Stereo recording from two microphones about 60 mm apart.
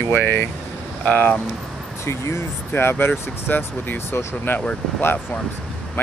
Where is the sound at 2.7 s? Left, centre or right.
Left.